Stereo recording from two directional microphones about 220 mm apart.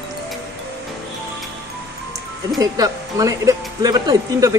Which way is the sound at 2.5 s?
15° right (ahead or behind).